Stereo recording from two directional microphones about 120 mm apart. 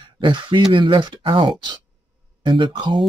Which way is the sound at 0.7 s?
40° right (ahead or behind).